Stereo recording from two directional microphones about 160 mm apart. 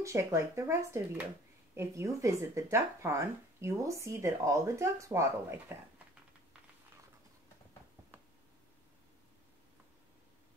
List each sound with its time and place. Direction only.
0.0 s speech: 20° right (ahead or behind)